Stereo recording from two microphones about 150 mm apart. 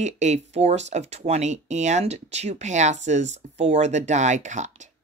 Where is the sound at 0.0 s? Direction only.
50° right (ahead or behind).